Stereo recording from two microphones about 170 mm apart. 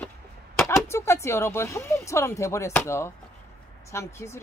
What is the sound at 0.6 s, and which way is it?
Speech, 15° left (ahead or behind).